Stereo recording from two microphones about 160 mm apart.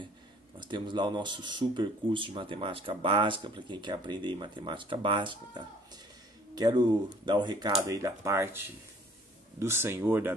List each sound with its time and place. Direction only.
0.6 s speech: 30° right (ahead or behind); by 10.3 s 15° right (ahead or behind)